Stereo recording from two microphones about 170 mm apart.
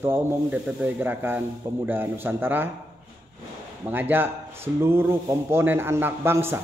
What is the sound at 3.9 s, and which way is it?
A man's voice, 10° right (ahead or behind).